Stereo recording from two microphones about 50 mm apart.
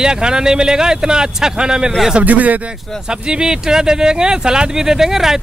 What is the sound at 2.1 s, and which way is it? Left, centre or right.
Speech, right.